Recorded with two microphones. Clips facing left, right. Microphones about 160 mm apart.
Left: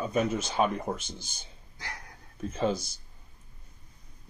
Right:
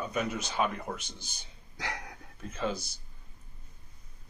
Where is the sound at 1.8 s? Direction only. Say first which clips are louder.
Right 5 dB; 75° right (ahead or behind).